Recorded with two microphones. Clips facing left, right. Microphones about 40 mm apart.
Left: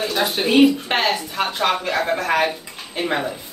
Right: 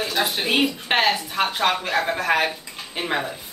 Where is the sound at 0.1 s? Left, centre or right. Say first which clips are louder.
Left 2 dB; centre.